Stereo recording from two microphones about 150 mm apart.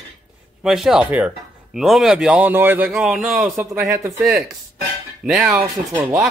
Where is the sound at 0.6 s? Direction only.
Centre (ahead or behind).